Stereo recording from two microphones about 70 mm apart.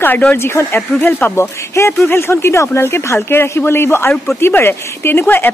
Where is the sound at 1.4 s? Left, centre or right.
Left.